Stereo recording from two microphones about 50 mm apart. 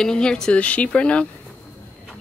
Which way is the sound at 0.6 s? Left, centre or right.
Left.